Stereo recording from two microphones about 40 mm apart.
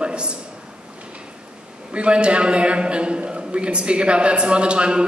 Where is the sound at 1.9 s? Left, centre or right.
Right.